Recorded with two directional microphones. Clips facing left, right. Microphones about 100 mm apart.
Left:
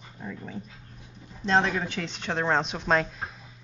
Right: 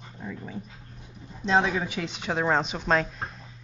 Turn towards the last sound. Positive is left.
turn(degrees=0)  # may be behind; listen again after turning